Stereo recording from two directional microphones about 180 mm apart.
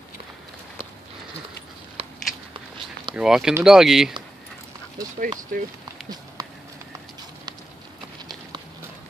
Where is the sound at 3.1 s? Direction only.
5° right (ahead or behind).